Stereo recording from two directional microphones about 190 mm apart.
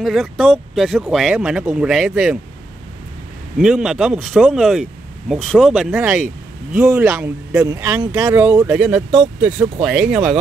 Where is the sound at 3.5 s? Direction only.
5° right (ahead or behind).